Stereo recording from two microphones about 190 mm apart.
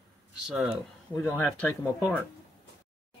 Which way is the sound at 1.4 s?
10° left (ahead or behind).